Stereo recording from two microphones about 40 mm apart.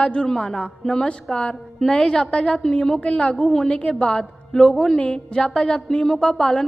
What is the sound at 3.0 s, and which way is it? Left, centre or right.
Speech, left.